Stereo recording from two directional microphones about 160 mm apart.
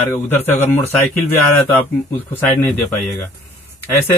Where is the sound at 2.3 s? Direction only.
15° left (ahead or behind).